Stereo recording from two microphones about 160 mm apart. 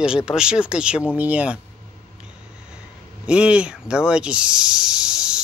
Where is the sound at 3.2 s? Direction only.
5° right (ahead or behind).